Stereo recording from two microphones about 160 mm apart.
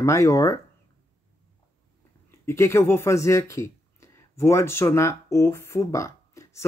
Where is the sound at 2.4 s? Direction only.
15° left (ahead or behind).